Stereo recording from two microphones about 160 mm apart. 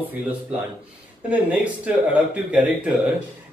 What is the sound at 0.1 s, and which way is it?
A man's voice, 10° right (ahead or behind).